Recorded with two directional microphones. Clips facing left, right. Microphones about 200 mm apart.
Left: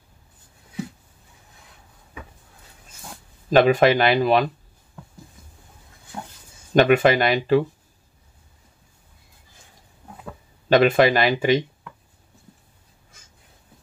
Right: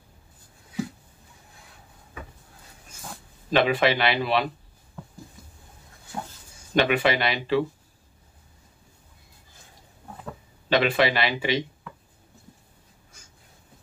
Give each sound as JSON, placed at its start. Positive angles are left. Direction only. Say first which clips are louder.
{"t": 3.4, "sound": "speech", "louder": "left 6 dB", "side_deg": 45}
{"t": 6.7, "sound": "speech", "louder": "left 6 dB", "side_deg": 45}
{"t": 10.7, "sound": "speech", "louder": "left 6 dB", "side_deg": 45}